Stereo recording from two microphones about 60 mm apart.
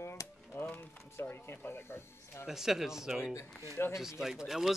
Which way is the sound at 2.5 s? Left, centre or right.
Centre.